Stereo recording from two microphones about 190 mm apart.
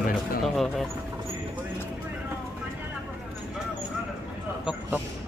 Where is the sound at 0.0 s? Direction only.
45° left (ahead or behind).